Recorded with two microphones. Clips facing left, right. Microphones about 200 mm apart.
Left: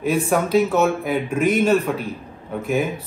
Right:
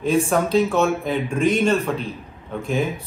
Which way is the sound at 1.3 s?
30° right (ahead or behind).